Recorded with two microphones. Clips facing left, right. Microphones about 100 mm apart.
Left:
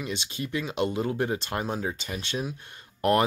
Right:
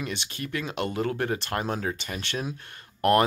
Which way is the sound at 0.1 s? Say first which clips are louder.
Left 1 dB; 15° left (ahead or behind).